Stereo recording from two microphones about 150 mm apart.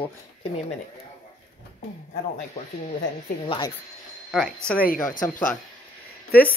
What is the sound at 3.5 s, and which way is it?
Speech, 35° left (ahead or behind).